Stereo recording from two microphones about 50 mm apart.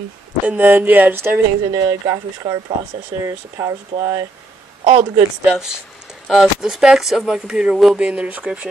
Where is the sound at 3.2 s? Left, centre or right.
Right.